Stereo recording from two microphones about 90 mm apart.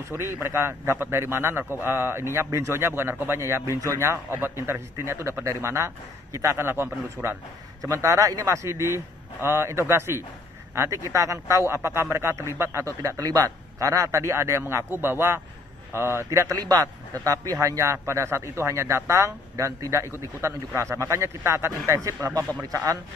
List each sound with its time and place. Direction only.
0.1 s a man's voice: 30° right (ahead or behind)
7.8 s a man's voice: 40° right (ahead or behind)